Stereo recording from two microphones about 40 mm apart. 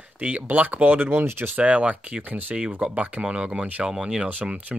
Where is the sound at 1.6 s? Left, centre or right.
Right.